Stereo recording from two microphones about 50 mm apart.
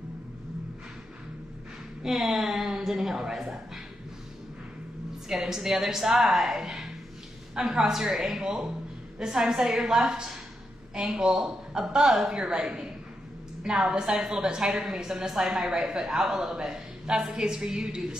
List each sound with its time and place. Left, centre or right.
2.0 s a woman's voice: centre
5.3 s a woman's voice: centre